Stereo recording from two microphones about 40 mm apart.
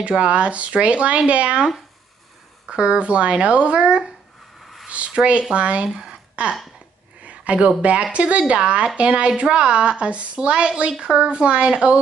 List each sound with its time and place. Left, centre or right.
0.0 s speech: right
2.7 s speech: right
4.8 s a sound: right
5.2 s speech: right
6.4 s a sound: right
8.1 s speech: right